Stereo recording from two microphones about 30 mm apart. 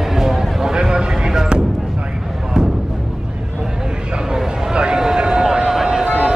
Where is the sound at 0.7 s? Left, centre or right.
Right.